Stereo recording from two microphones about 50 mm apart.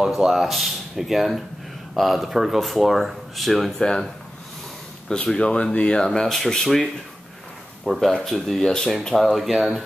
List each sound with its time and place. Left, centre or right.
0.1 s speech: centre
5.1 s speech: centre
6.0 s speech: centre
9.1 s speech: centre